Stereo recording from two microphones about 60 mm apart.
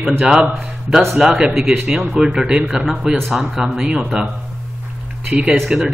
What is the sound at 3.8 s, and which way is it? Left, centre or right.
Speech, centre.